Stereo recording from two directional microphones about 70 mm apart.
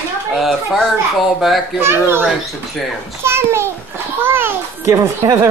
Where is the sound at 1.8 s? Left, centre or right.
Right.